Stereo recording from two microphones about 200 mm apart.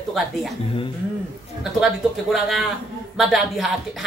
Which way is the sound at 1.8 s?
Centre (ahead or behind).